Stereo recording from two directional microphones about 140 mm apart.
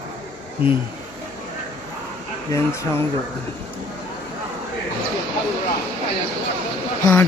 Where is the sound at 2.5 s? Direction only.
20° left (ahead or behind).